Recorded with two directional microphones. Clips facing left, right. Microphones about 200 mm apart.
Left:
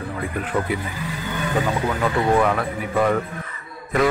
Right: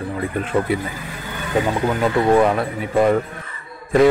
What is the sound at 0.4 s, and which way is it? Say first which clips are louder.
Speech: right 4 dB; 25° right (ahead or behind).